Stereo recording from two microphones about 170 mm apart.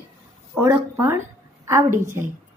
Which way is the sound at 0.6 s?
15° right (ahead or behind).